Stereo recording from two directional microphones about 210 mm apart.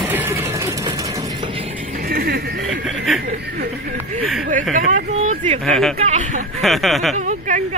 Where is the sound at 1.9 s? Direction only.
45° right (ahead or behind).